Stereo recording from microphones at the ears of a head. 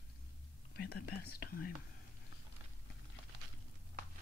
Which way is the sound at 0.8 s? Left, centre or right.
Left.